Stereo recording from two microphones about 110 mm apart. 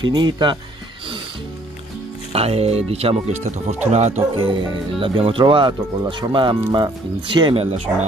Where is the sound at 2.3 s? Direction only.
65° right (ahead or behind); by 4.2 s 90° right.